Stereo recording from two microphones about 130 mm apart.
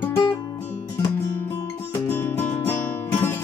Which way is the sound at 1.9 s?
20° left (ahead or behind).